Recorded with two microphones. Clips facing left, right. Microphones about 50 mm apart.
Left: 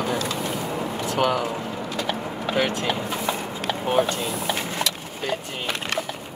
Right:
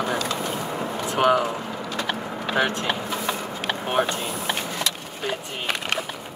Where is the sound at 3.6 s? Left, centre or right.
Right.